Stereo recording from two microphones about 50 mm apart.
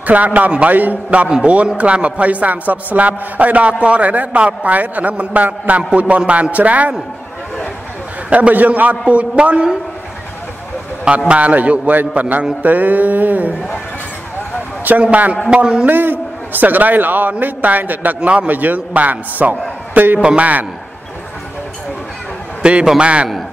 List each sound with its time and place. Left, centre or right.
0.0 s a man's voice: right
8.3 s speech: right
11.1 s a man's voice: right
14.9 s a man's voice: right
15.5 s speech: centre
15.9 s a man's voice: right
18.2 s speech: right
18.5 s a man's voice: right
20.2 s speech: right
22.6 s a man's voice: right